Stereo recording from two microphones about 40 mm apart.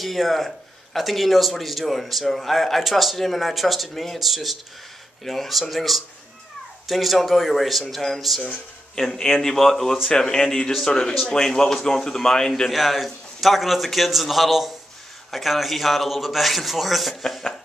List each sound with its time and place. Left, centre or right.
0.0 s a man's voice: centre
8.9 s a man's voice: centre
12.7 s a man's voice: centre